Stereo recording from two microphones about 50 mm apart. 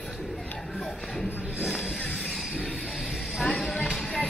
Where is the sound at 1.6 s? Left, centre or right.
Centre.